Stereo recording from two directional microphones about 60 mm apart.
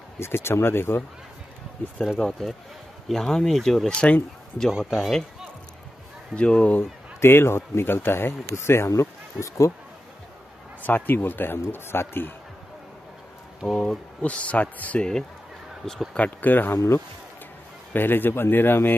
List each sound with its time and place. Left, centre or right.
0.2 s speech: left
3.1 s speech: centre
6.3 s a man's voice: centre
6.8 s speech: left
9.3 s speech: centre
10.8 s speech: left
13.7 s speech: centre
14.2 s a man's voice: left
15.8 s speech: centre
16.2 s speech: left
16.7 s speech: left
17.9 s speech: left